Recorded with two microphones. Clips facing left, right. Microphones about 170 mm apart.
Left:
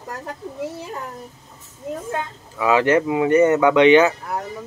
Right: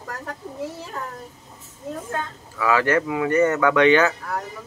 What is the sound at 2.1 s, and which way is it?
Speech, 20° left (ahead or behind).